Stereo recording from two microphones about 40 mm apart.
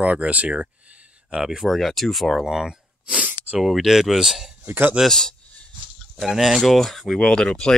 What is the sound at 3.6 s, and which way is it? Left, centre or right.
Speech, centre.